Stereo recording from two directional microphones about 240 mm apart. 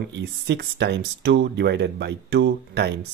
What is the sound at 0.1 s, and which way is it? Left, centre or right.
Speech, right.